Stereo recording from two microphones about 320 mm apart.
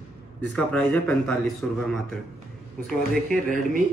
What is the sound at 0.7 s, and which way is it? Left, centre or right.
Speech, centre.